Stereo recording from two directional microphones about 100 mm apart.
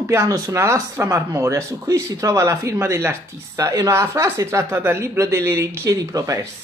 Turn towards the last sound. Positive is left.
turn(degrees=-35)  # may be behind; listen again after turning